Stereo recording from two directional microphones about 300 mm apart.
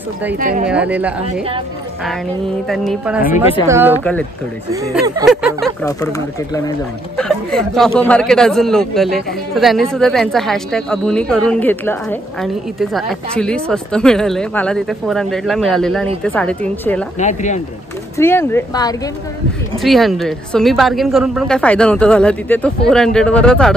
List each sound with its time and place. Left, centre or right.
0.4 s speech: right
0.7 s a man's voice: centre
2.7 s a man's voice: centre
5.2 s a man's voice: centre
5.9 s a man's voice: centre
17.2 s speech: left
18.1 s speech: centre
19.8 s a man's voice: centre